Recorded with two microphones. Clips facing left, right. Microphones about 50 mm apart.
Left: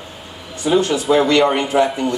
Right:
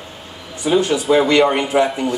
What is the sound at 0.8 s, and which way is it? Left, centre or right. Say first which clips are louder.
Speech: even; centre.